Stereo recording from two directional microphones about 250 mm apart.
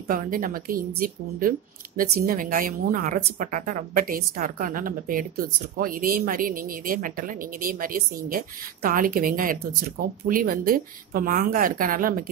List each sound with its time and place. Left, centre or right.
0.1 s speech: right